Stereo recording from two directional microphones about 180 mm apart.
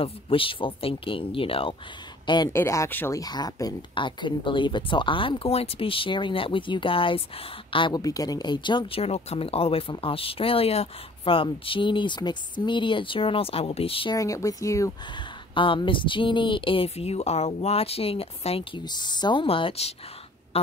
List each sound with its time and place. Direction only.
0.0 s a woman's voice: 30° left (ahead or behind)
14.1 s speech: 20° left (ahead or behind)
15.5 s a woman's voice: 30° left (ahead or behind)
20.5 s a sound: 35° left (ahead or behind)